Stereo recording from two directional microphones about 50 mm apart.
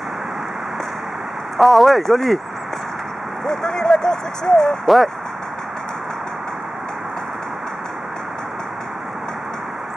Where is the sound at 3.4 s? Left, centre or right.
Centre.